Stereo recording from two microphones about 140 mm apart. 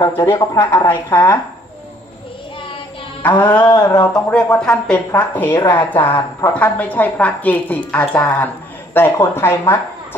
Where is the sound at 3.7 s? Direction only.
30° left (ahead or behind).